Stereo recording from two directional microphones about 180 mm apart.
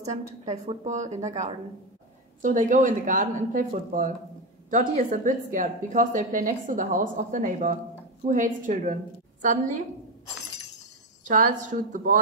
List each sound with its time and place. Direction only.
0.0 s a woman's voice: 40° right (ahead or behind)
11.2 s a woman's voice: 45° right (ahead or behind)